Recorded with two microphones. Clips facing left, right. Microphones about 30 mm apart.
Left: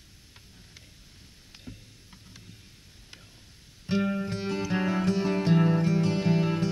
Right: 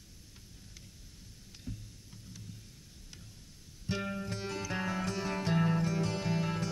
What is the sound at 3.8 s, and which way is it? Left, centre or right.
Music, left.